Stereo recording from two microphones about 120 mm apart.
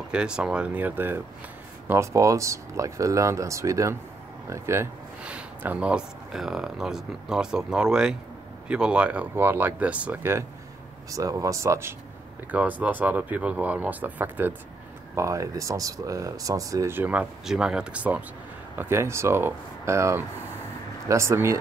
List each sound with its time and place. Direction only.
0.1 s speech: 10° right (ahead or behind)
11.1 s speech: 30° right (ahead or behind)
12.4 s speech: 15° right (ahead or behind)
15.1 s speech: 25° right (ahead or behind)